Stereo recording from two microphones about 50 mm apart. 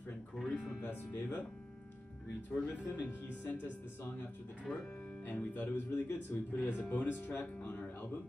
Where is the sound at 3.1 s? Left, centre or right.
Left.